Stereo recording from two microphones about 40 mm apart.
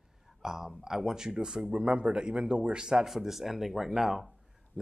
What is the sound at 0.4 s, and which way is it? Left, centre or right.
Speech, centre.